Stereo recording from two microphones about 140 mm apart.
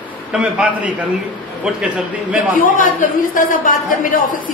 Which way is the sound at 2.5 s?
75° left (ahead or behind).